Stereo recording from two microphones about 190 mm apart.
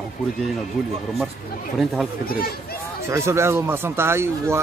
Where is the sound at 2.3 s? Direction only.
50° left (ahead or behind).